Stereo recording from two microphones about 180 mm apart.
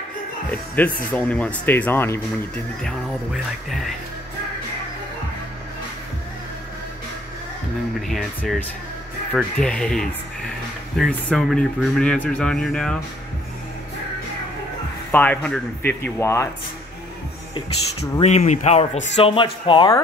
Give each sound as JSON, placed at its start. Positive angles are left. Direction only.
{"t": 0.5, "sound": "speech", "side_deg": 10}
{"t": 8.1, "sound": "speech", "side_deg": 0}
{"t": 15.0, "sound": "speech", "side_deg": 10}
{"t": 18.2, "sound": "speech", "side_deg": 40}